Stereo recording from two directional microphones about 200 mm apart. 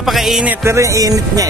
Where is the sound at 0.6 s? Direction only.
15° right (ahead or behind).